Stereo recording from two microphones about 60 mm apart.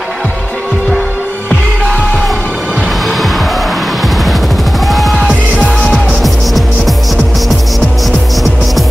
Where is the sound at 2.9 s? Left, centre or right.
Centre.